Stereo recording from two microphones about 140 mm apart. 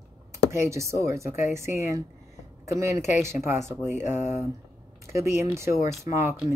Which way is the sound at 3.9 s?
55° left (ahead or behind).